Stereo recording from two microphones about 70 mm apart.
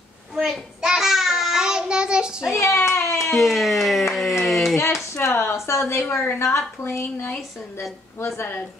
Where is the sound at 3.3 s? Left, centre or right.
Centre.